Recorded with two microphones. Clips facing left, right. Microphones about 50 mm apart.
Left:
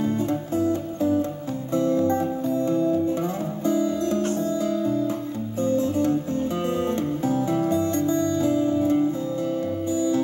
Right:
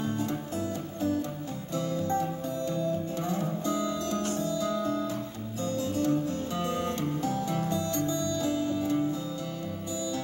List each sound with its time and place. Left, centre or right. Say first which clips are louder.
0.0 s music: left 7 dB; left